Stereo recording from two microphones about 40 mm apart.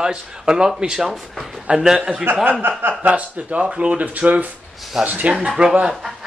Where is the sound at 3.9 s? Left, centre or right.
Right.